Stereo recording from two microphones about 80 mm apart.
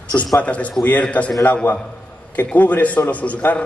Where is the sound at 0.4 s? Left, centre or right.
Centre.